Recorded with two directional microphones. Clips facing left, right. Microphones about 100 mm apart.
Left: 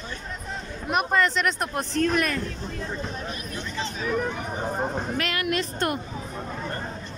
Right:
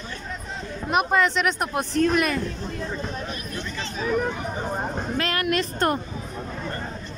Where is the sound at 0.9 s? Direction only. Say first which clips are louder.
Right 2 dB; centre (ahead or behind).